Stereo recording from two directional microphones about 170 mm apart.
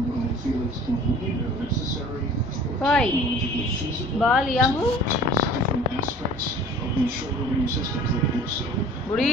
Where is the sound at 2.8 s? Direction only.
5° left (ahead or behind).